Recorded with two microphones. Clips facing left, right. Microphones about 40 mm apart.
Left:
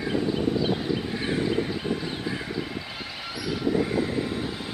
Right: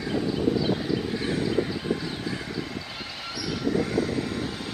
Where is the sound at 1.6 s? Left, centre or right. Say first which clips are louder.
Right 1 dB; centre.